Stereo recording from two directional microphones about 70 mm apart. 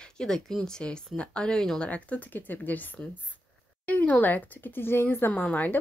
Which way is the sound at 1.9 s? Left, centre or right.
Left.